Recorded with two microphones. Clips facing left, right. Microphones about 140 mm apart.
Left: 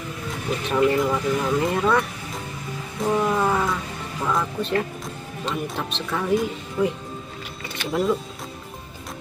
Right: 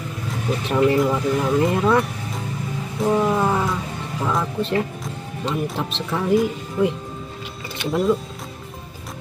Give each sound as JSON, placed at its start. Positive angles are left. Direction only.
{"t": 0.7, "sound": "speech", "side_deg": 0}
{"t": 3.0, "sound": "vehicle", "side_deg": -5}
{"t": 4.2, "sound": "speech", "side_deg": 0}
{"t": 7.9, "sound": "speech", "side_deg": 0}